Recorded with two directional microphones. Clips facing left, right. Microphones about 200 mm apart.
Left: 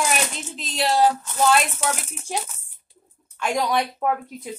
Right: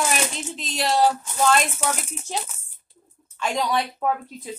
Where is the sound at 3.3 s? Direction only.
10° left (ahead or behind).